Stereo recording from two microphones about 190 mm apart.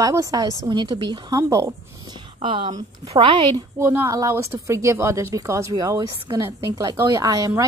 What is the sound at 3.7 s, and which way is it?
Speech, 15° right (ahead or behind).